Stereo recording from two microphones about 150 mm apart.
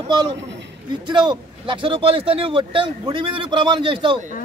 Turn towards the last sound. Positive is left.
turn(degrees=-35)  # may be behind; listen again after turning